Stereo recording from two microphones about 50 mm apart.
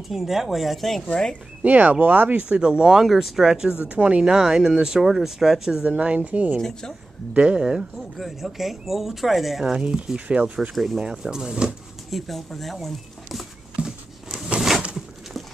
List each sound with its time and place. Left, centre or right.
0.1 s speech: centre
1.6 s speech: right
2.4 s speech: right
3.8 s speech: right
4.2 s speech: centre
5.8 s speech: right
6.6 s speech: centre
7.3 s speech: centre
8.2 s speech: centre
9.7 s speech: centre
10.7 s speech: centre
11.1 s speech: centre
12.1 s speech: centre
13.8 s a sound: right